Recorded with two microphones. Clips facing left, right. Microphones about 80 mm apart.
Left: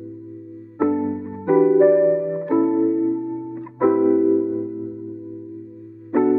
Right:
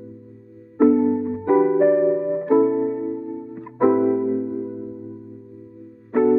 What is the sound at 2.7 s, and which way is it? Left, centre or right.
Music, right.